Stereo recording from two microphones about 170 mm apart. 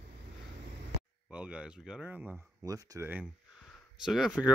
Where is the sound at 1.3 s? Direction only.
5° right (ahead or behind).